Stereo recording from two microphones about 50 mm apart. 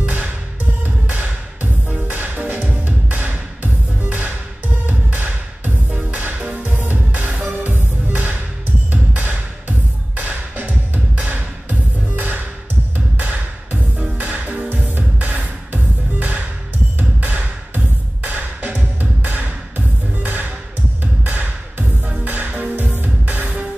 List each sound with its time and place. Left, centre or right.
0.0 s music: right